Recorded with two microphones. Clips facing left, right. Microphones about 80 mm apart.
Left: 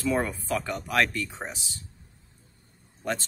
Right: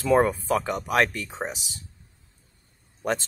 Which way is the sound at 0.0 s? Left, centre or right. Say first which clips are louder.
Right 7 dB; right.